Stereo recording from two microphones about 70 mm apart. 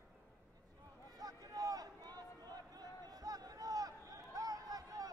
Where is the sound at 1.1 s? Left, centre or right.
Right.